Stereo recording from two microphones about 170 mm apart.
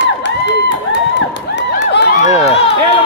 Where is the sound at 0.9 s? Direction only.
90° left.